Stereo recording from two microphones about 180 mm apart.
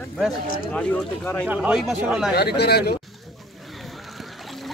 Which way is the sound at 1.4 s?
10° right (ahead or behind).